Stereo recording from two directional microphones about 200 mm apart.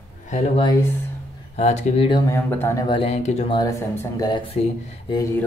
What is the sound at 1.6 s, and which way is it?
Speech, 30° left (ahead or behind).